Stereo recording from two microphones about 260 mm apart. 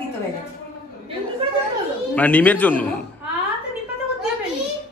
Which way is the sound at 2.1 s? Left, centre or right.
Centre.